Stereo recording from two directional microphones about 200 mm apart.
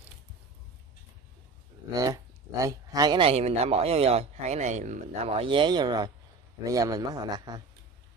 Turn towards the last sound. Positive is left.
turn(degrees=-20)  # may be behind; listen again after turning